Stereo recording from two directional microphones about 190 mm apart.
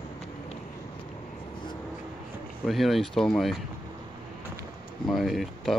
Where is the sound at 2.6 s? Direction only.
Centre (ahead or behind).